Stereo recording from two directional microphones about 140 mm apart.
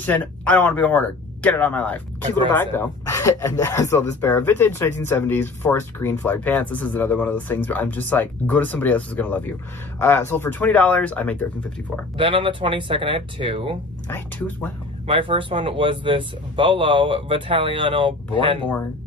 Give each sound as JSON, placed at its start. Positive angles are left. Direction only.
{"t": 0.0, "sound": "speech", "side_deg": 10}
{"t": 12.2, "sound": "speech", "side_deg": -35}
{"t": 14.0, "sound": "speech", "side_deg": 15}
{"t": 15.0, "sound": "speech", "side_deg": -40}